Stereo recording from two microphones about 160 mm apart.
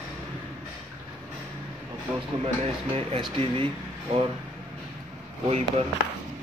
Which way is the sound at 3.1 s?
35° right (ahead or behind).